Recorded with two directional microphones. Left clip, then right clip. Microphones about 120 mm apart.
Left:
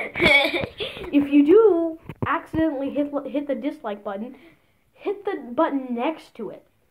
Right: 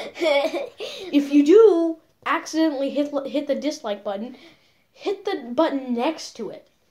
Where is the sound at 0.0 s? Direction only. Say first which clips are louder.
Left 3 dB; 60° right (ahead or behind).